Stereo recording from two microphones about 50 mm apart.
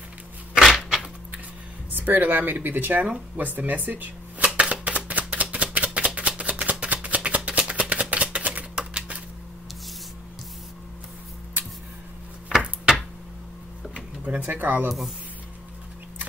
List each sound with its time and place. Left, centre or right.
0.6 s cupboard open or close: centre
1.9 s speech: right
4.8 s chopping: right
7.2 s a sound: right
8.7 s typewriter: centre
13.9 s a sound: right
14.4 s speech: right